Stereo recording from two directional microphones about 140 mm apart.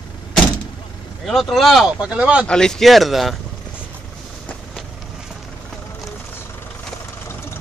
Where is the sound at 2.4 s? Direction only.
5° left (ahead or behind).